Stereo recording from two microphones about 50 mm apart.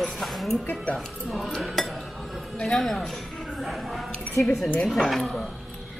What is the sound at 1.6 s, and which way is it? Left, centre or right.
Cutlery, centre.